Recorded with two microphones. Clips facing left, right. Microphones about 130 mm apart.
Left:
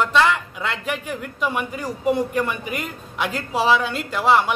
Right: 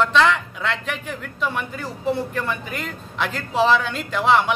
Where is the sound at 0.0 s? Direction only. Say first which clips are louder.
Right 1 dB; 5° left (ahead or behind).